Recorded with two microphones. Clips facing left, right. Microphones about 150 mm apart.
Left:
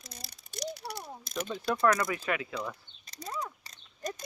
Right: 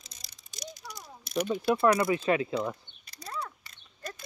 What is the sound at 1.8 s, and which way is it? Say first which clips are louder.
Speech: right 1 dB; 25° right (ahead or behind).